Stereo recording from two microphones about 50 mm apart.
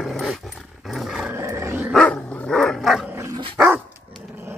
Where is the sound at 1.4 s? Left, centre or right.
Right.